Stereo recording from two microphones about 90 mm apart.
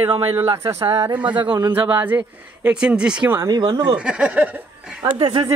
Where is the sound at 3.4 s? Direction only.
55° right (ahead or behind).